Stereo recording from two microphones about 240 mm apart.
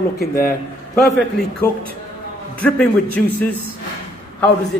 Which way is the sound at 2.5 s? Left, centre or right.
Centre.